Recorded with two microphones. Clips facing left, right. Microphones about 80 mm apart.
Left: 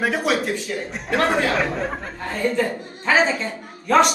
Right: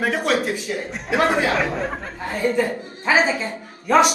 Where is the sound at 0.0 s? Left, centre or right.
Centre.